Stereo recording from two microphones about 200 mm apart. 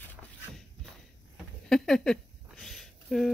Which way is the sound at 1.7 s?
Centre (ahead or behind).